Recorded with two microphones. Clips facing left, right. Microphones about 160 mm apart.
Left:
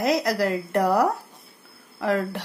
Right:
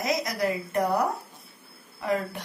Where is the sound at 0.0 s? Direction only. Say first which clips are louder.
Left 5 dB; 65° left (ahead or behind).